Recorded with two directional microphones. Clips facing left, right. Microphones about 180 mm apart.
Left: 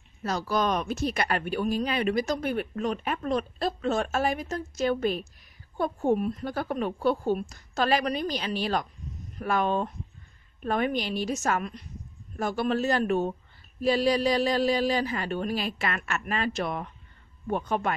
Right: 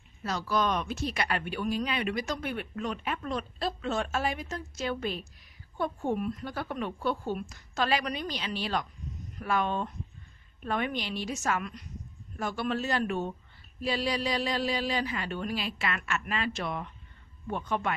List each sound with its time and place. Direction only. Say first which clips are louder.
0.2 s speech: left 2 dB; 40° left (ahead or behind)